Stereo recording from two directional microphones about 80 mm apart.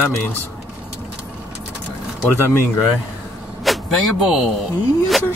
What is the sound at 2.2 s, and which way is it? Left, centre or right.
Speech, left.